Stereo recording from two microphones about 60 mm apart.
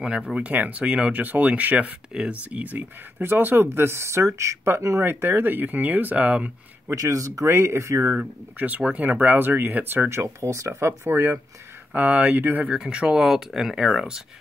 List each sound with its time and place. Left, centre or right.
0.0 s speech: centre; by 5.0 s right
5.0 s speech: right
7.0 s speech: right
8.2 s speech: right
10.0 s speech: right
11.9 s speech: right
12.6 s speech: centre